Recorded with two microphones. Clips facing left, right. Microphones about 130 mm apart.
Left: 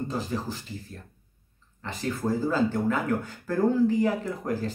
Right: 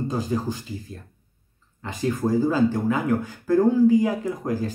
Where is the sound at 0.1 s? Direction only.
15° right (ahead or behind).